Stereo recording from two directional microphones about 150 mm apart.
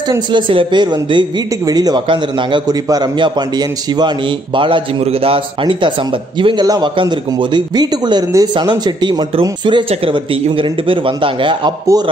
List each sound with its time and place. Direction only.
0.3 s a man's voice: 35° right (ahead or behind)